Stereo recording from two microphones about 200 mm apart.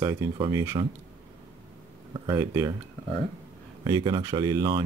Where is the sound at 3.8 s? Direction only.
20° right (ahead or behind).